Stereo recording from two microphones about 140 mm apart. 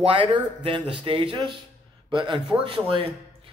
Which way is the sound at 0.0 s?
40° right (ahead or behind).